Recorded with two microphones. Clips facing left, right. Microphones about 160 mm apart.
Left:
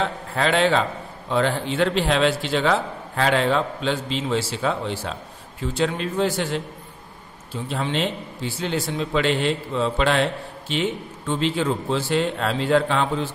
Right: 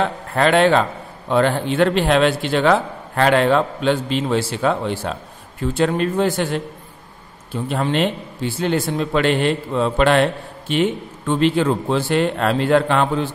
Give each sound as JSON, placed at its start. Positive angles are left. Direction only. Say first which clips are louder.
{"t": 0.0, "sound": "a man's voice", "louder": "right 5 dB", "side_deg": -60}